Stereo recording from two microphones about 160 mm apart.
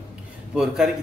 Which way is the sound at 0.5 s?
5° right (ahead or behind).